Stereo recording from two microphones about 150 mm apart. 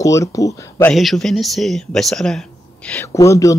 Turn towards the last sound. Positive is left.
turn(degrees=20)  # may be behind; listen again after turning